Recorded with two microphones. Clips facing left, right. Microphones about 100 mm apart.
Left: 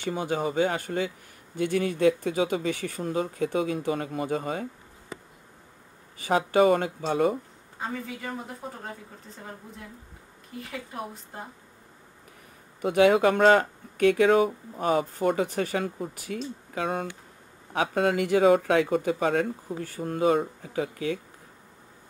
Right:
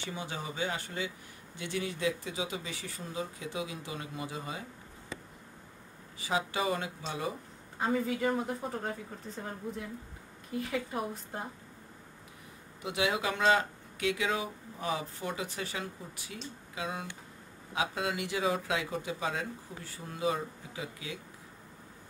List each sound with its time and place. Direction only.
0.0 s speech: 50° left (ahead or behind)
6.1 s speech: 50° left (ahead or behind)
7.8 s a woman's voice: centre (ahead or behind)
10.6 s a woman's voice: centre (ahead or behind)
12.8 s speech: 50° left (ahead or behind)